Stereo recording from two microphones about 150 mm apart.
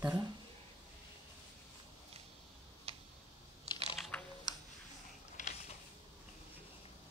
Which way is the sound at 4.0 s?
5° left (ahead or behind).